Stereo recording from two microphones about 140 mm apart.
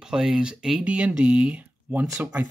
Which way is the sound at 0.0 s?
5° right (ahead or behind).